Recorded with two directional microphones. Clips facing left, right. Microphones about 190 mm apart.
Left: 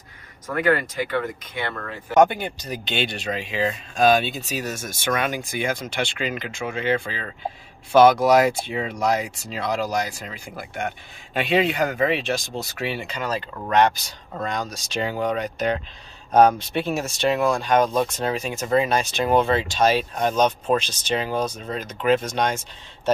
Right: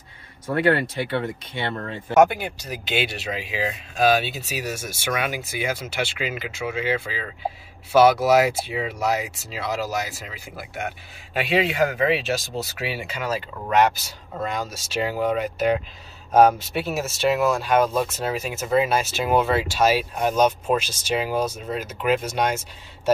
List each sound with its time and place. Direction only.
0.5 s speech: 30° right (ahead or behind)
2.1 s speech: 5° right (ahead or behind)